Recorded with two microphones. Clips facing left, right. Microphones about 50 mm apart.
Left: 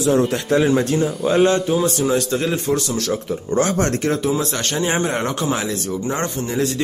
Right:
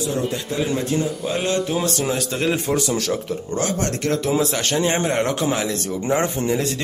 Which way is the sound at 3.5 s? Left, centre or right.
Left.